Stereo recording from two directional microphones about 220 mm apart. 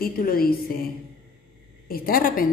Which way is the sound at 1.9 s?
40° left (ahead or behind).